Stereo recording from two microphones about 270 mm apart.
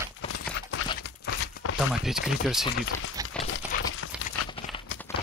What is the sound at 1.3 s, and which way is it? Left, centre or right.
Crumpling, left.